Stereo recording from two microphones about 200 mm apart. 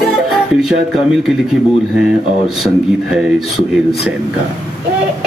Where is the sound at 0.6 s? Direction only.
Centre (ahead or behind).